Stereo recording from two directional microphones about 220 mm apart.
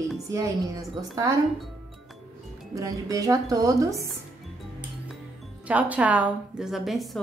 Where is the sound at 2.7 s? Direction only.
15° right (ahead or behind).